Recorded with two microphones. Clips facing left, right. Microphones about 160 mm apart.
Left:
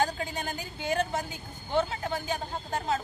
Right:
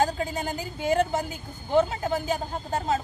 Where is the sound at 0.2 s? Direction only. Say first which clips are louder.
Right 5 dB; 35° right (ahead or behind).